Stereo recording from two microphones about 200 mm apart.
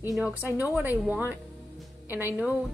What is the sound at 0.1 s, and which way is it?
A woman's voice, 5° right (ahead or behind).